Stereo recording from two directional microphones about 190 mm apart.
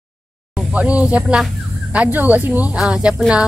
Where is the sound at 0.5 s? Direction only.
5° right (ahead or behind).